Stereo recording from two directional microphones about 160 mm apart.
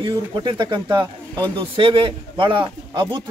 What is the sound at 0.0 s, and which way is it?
A man's voice, 30° right (ahead or behind).